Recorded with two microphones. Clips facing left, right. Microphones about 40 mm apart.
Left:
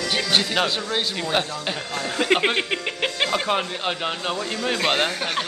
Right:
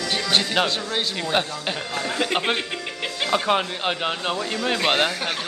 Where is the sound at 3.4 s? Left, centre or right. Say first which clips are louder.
Right 2 dB; centre.